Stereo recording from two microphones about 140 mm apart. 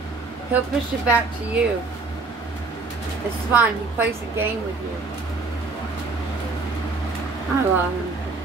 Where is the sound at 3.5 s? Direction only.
15° right (ahead or behind).